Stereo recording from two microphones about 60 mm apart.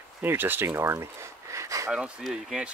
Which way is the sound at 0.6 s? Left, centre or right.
Right.